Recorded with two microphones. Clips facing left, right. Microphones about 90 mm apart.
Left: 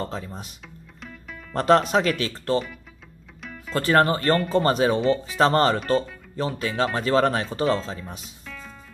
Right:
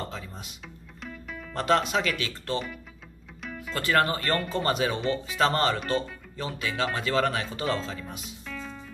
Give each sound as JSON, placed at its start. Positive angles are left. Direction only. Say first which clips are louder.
{"t": 0.0, "sound": "speech", "louder": "left 5 dB", "side_deg": 35}
{"t": 1.5, "sound": "speech", "louder": "left 6 dB", "side_deg": 40}
{"t": 3.4, "sound": "music", "louder": "right 1 dB", "side_deg": 0}
{"t": 3.7, "sound": "speech", "louder": "left 5 dB", "side_deg": 40}
{"t": 8.5, "sound": "music", "louder": "right 2 dB", "side_deg": 0}